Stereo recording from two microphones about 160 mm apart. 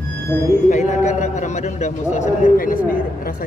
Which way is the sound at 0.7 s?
45° left (ahead or behind).